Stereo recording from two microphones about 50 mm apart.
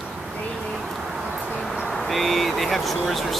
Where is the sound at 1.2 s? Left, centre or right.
Centre.